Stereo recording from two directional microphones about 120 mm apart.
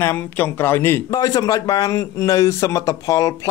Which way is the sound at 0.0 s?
20° left (ahead or behind).